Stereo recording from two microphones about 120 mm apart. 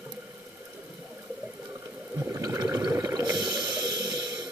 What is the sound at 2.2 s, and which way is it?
Water, 25° right (ahead or behind).